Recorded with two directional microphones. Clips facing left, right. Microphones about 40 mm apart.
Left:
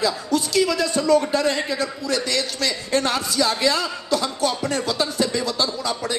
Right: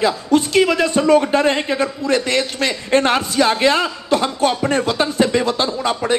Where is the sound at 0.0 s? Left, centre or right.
Right.